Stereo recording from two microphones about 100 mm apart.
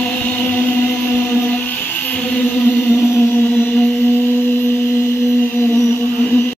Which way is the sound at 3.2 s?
20° left (ahead or behind).